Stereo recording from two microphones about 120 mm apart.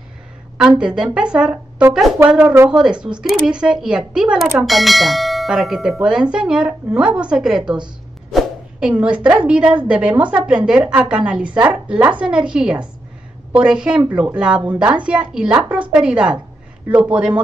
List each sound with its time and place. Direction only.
0.6 s a woman's voice: 5° right (ahead or behind)
8.3 s a sound: 5° right (ahead or behind)
9.0 s a woman's voice: 10° right (ahead or behind)